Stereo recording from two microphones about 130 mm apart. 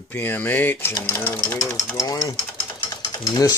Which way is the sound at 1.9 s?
30° left (ahead or behind).